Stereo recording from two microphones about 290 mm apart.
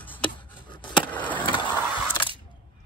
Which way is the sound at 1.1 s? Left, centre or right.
Centre.